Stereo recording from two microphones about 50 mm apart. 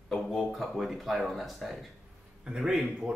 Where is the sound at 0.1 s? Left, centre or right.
Centre.